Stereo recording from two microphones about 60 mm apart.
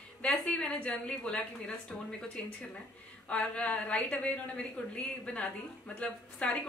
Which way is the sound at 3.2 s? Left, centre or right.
Centre.